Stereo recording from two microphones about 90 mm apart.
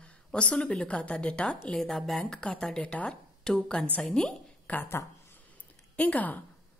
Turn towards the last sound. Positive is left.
turn(degrees=15)  # may be behind; listen again after turning